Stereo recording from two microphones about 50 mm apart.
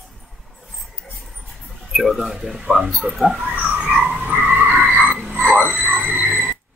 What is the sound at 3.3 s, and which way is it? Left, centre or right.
Speech, centre.